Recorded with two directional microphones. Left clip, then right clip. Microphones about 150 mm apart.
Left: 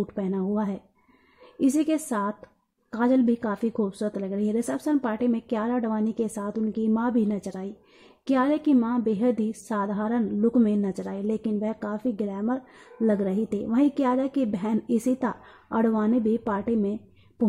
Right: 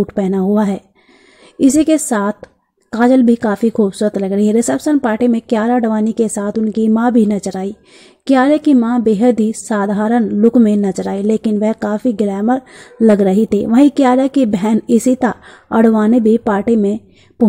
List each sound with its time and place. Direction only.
0.0 s a woman's voice: 25° right (ahead or behind)